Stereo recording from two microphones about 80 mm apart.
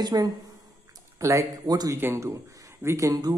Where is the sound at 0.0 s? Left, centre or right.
Right.